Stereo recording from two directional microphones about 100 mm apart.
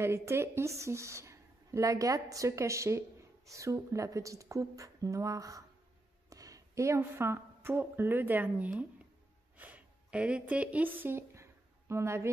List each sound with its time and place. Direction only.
0.0 s a woman's voice: 25° right (ahead or behind)